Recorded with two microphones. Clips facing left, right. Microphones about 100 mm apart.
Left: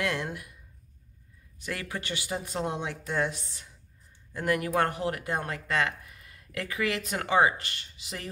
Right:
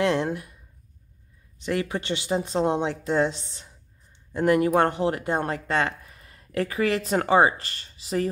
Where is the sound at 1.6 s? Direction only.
20° right (ahead or behind).